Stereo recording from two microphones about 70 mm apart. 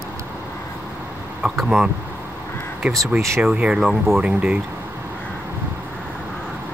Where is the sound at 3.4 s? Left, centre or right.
Centre.